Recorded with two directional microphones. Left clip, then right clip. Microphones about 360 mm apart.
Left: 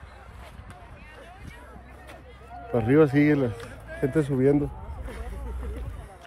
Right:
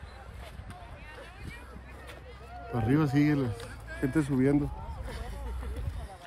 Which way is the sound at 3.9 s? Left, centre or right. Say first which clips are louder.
Left 4 dB; centre.